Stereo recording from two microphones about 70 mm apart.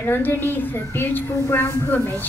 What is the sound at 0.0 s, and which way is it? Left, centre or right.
A woman's voice, left.